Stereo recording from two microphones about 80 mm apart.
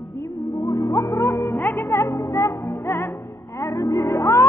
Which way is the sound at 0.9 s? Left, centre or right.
Left.